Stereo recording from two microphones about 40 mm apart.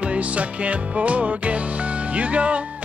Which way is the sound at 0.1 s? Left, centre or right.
Right.